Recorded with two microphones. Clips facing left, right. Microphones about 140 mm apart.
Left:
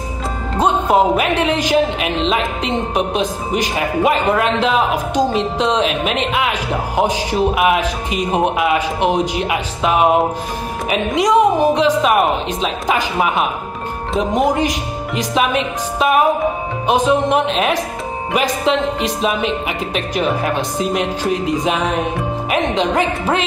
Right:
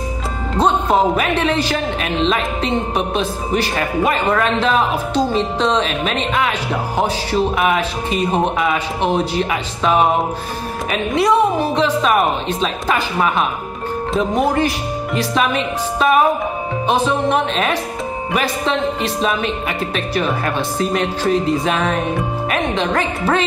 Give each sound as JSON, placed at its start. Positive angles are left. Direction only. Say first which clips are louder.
{"t": 0.6, "sound": "a woman's voice", "louder": "left 1 dB", "side_deg": 10}
{"t": 14.3, "sound": "a woman's voice", "louder": "left 2 dB", "side_deg": 15}
{"t": 18.9, "sound": "a woman's voice", "louder": "left 1 dB", "side_deg": 15}